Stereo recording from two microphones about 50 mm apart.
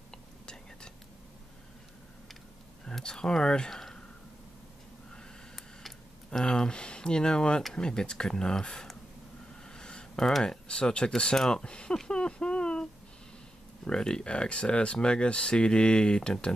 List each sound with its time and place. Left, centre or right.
0.1 s whispering: centre
2.8 s speech: centre
3.7 s a sound: centre
5.1 s a sound: centre
6.4 s speech: centre
11.6 s speech: centre
13.8 s speech: centre